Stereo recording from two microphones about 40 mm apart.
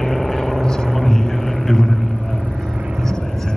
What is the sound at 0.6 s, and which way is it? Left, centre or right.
Vehicle, centre.